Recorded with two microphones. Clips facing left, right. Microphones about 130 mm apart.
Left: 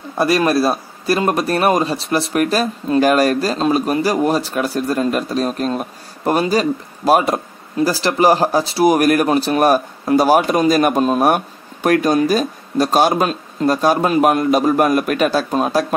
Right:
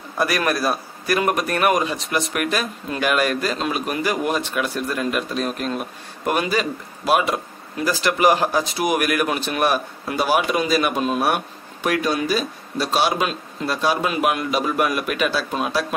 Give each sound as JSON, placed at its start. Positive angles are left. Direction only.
{"t": 0.2, "sound": "speech", "side_deg": 25}